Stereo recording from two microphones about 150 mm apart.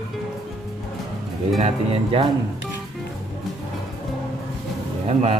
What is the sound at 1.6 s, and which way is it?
Speech, 40° right (ahead or behind).